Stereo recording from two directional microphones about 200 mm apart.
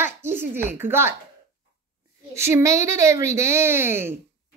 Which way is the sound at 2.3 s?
15° right (ahead or behind).